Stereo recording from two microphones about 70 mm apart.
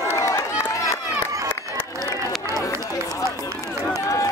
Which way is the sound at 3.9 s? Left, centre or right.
Left.